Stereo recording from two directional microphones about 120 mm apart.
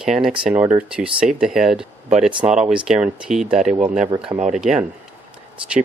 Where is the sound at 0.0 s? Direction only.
5° right (ahead or behind).